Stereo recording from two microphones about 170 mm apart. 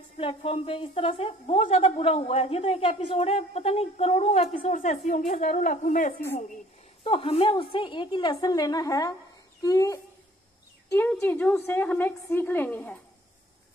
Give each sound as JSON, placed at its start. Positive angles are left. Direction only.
{"t": 0.2, "sound": "speech", "side_deg": 35}
{"t": 4.6, "sound": "a woman's voice", "side_deg": 50}
{"t": 7.0, "sound": "a woman's voice", "side_deg": 35}